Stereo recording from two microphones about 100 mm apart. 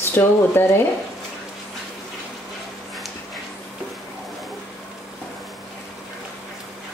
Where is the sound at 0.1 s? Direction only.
20° left (ahead or behind).